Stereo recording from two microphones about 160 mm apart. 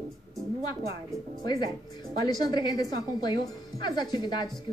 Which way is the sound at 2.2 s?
25° left (ahead or behind).